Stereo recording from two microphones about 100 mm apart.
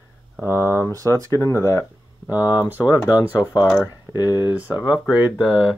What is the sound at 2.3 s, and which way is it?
Speech, 15° right (ahead or behind).